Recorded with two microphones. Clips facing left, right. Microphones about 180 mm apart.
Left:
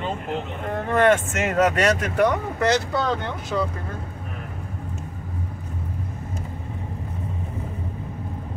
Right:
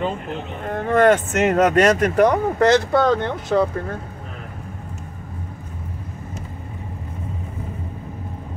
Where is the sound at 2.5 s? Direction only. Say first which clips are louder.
Right 6 dB; 55° right (ahead or behind).